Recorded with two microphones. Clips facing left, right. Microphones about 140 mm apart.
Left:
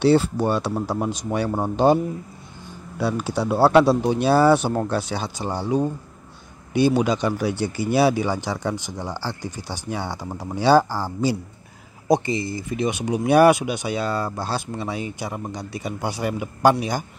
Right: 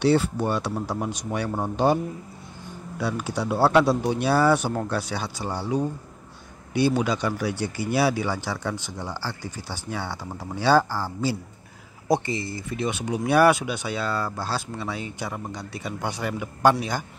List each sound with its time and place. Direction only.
0.0 s speech: 30° left (ahead or behind)
3.0 s speech: 30° left (ahead or behind); by 16.7 s 15° left (ahead or behind)